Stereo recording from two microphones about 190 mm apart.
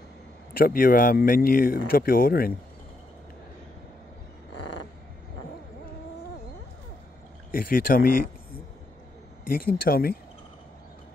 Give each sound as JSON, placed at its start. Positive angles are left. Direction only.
{"t": 0.6, "sound": "speech", "side_deg": 50}
{"t": 7.5, "sound": "speech", "side_deg": 50}
{"t": 9.4, "sound": "speech", "side_deg": 50}